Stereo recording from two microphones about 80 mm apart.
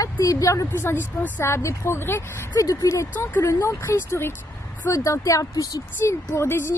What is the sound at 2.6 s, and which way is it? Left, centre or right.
A woman's voice, left.